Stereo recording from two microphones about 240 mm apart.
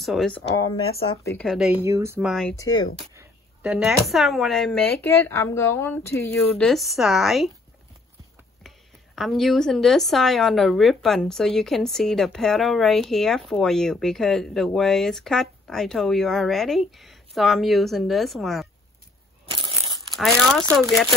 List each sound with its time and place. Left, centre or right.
0.0 s speech: centre
2.5 s speech: centre
3.2 s speech: centre
6.6 s speech: centre
8.6 s speech: centre
19.5 s crunch: centre
20.2 s speech: centre